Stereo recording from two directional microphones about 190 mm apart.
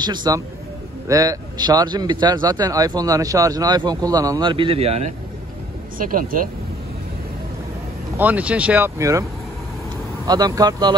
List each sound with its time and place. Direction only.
0.0 s a man's voice: 20° right (ahead or behind)
5.9 s speech: 45° right (ahead or behind)
8.2 s speech: 10° right (ahead or behind)
10.2 s a man's voice: 20° right (ahead or behind)